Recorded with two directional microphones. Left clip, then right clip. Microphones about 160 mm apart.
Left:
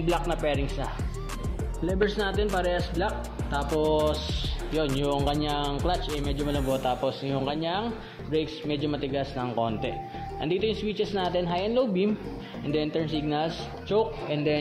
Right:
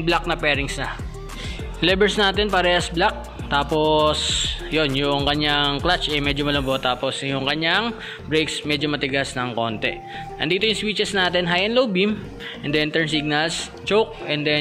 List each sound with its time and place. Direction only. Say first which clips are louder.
0.3 s speech: right 7 dB; 20° right (ahead or behind)
2.1 s a man's voice: right 8 dB; 20° right (ahead or behind)